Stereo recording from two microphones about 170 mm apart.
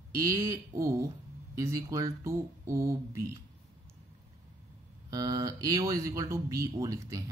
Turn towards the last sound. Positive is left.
turn(degrees=-20)  # may be behind; listen again after turning